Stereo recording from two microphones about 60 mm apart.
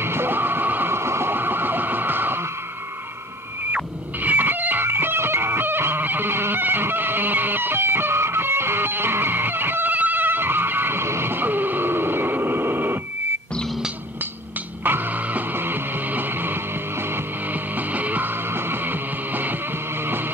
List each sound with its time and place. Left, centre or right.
0.0 s music: right
3.7 s music: right
14.8 s music: right
17.7 s music: right